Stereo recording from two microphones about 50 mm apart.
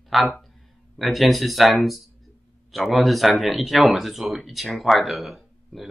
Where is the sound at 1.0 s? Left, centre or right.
Centre.